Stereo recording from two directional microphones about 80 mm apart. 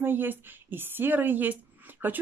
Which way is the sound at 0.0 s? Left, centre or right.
Right.